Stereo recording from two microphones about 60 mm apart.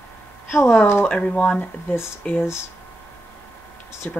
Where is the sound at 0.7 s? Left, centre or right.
Left.